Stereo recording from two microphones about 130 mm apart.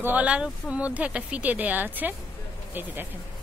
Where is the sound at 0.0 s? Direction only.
10° right (ahead or behind).